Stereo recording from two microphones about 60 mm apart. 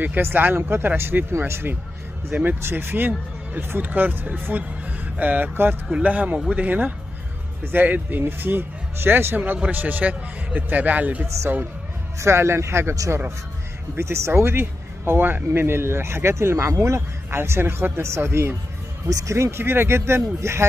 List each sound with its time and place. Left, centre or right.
0.0 s speech: right
6.0 s a man's voice: right
12.2 s speech: right
13.9 s speech: right
19.0 s speech: right
19.3 s speech: right